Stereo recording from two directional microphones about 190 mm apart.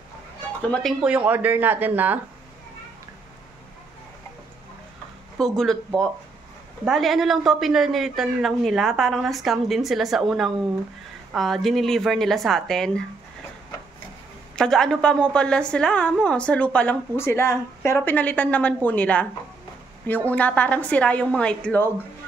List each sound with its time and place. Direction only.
0.7 s speech: centre (ahead or behind)
5.4 s a woman's voice: centre (ahead or behind)
14.5 s a woman's voice: 5° left (ahead or behind)
20.2 s a woman's voice: 5° left (ahead or behind)